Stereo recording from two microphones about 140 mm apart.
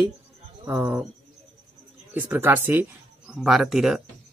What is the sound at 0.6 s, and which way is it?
Speech, 15° right (ahead or behind).